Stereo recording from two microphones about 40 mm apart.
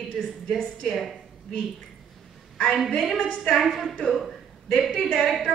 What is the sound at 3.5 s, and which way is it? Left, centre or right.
Speech, centre.